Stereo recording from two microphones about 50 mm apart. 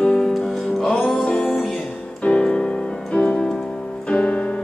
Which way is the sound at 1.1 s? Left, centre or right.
Centre.